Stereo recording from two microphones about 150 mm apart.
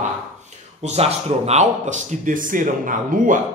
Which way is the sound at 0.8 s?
45° right (ahead or behind).